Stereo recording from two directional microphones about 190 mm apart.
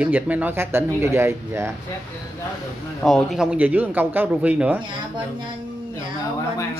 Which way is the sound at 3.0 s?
Centre (ahead or behind).